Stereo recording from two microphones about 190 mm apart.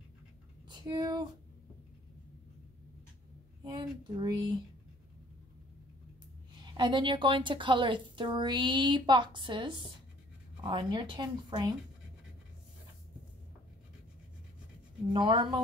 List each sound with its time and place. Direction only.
0.7 s speech: 25° right (ahead or behind)
3.6 s a woman's voice: 20° right (ahead or behind)
6.6 s a woman's voice: 25° right (ahead or behind)
15.1 s a woman's voice: 25° right (ahead or behind)